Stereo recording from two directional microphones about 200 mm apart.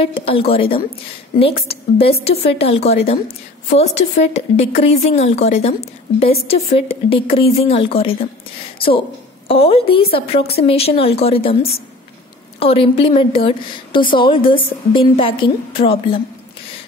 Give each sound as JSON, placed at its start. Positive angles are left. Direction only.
{"t": 0.0, "sound": "a woman's voice", "side_deg": 30}
{"t": 9.5, "sound": "a woman's voice", "side_deg": 30}